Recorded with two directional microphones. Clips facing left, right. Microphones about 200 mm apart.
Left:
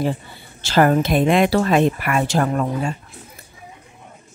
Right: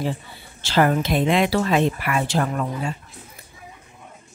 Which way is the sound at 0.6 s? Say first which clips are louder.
Left 3 dB; 45° left (ahead or behind).